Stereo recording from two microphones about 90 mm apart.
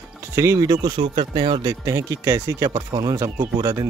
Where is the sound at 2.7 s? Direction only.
55° right (ahead or behind).